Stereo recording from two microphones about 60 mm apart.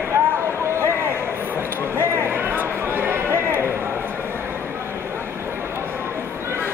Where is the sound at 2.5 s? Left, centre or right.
Right.